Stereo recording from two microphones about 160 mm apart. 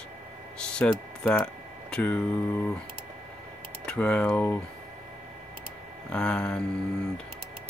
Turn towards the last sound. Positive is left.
turn(degrees=5)  # may be behind; listen again after turning